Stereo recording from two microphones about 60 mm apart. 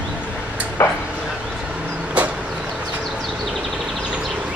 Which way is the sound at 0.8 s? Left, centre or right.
Left.